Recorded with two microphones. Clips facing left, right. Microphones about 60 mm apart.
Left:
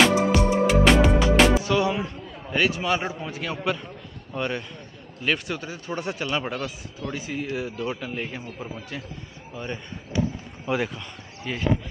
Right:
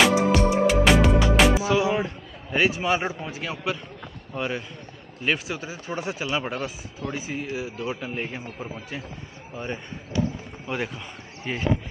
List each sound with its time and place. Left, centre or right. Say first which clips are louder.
0.0 s music: even; centre
3.2 s speech: left 1 dB; centre
11.5 s speech: right 1 dB; centre